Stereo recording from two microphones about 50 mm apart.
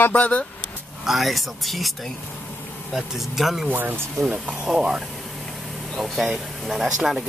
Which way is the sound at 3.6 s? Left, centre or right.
Right.